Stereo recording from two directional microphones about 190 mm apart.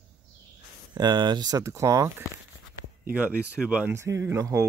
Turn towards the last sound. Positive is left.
turn(degrees=-15)  # may be behind; listen again after turning